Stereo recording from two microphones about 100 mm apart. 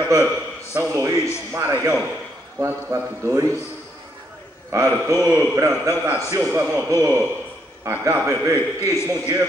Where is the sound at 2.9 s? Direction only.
35° right (ahead or behind).